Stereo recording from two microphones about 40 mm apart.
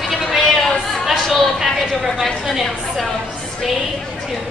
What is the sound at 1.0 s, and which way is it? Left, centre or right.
Chatter, centre.